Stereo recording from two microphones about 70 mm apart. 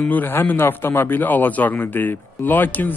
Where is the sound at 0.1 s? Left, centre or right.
Left.